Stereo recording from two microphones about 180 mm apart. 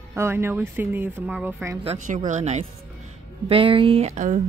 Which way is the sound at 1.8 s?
40° right (ahead or behind).